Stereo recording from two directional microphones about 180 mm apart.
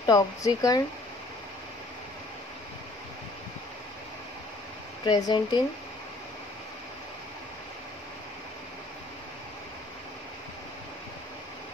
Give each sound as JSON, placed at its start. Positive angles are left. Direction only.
{"t": 0.0, "sound": "speech", "side_deg": 20}
{"t": 5.0, "sound": "speech", "side_deg": 25}